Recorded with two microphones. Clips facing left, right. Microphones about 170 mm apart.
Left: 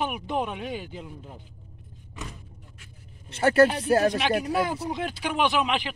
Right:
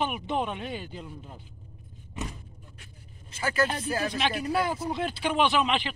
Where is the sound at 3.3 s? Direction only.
65° left (ahead or behind).